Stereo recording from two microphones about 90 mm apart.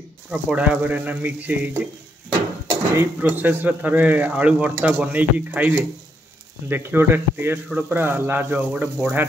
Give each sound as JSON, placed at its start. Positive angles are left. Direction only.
{"t": 0.3, "sound": "speech", "side_deg": -15}
{"t": 3.0, "sound": "speech", "side_deg": -20}